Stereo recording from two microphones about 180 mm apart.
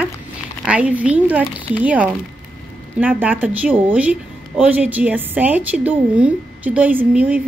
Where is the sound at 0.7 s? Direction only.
5° right (ahead or behind).